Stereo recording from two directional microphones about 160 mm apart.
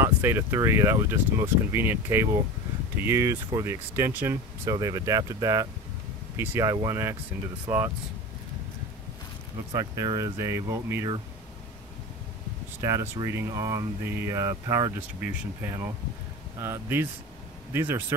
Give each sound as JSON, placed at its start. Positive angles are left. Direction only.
{"t": 0.0, "sound": "speech", "side_deg": -15}
{"t": 9.7, "sound": "speech", "side_deg": -20}
{"t": 12.8, "sound": "speech", "side_deg": -20}